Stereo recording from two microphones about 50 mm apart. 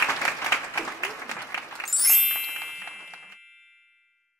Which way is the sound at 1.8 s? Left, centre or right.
Centre.